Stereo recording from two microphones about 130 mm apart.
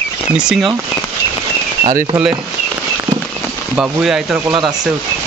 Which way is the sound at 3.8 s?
5° right (ahead or behind).